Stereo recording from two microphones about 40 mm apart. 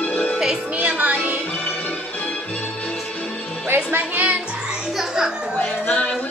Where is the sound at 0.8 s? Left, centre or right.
Right.